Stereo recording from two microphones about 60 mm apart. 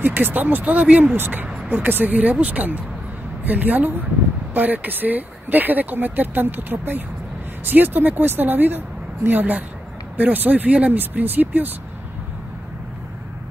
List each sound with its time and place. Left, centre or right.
0.0 s speech: right
1.1 s speech: right